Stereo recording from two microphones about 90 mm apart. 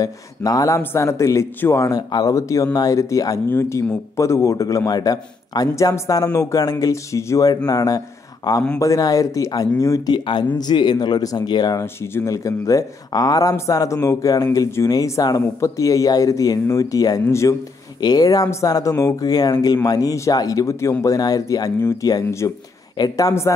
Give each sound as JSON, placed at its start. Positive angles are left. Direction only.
{"t": 0.0, "sound": "speech", "side_deg": 40}
{"t": 1.9, "sound": "speech", "side_deg": 50}
{"t": 2.3, "sound": "speech", "side_deg": 35}
{"t": 3.4, "sound": "speech", "side_deg": 25}
{"t": 10.0, "sound": "speech", "side_deg": 55}
{"t": 11.8, "sound": "speech", "side_deg": 25}
{"t": 18.0, "sound": "speech", "side_deg": 45}